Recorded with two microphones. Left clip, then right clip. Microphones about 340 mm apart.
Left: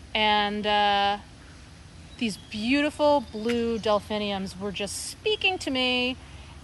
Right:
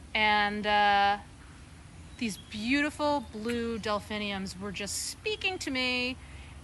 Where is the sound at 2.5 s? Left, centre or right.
Centre.